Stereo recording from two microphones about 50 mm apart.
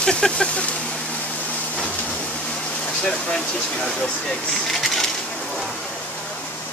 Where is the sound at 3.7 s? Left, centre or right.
Centre.